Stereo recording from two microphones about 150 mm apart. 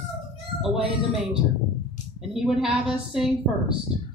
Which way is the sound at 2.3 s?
Centre (ahead or behind).